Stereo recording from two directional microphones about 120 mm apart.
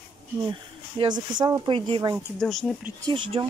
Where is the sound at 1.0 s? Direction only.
40° right (ahead or behind).